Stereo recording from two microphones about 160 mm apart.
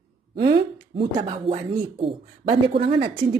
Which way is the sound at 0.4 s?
35° right (ahead or behind).